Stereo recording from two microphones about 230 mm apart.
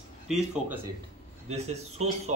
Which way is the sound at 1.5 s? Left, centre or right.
Right.